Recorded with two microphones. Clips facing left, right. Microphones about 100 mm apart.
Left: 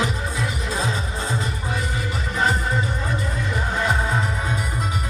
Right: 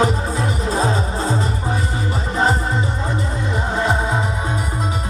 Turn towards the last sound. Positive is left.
turn(degrees=-25)  # may be behind; listen again after turning